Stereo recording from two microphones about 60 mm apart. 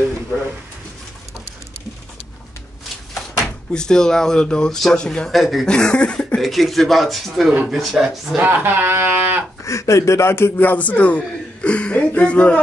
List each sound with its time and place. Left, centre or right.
3.7 s speech: centre
5.3 s speech: centre
5.7 s a sound: centre
6.4 s speech: centre
8.4 s speech: right
9.7 s a man's voice: left